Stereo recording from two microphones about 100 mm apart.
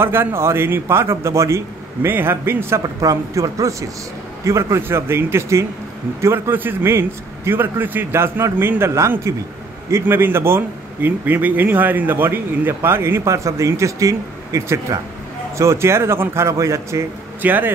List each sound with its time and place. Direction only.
0.0 s a man's voice: 25° right (ahead or behind)
2.8 s a man's voice: 35° right (ahead or behind)
17.4 s speech: 20° right (ahead or behind)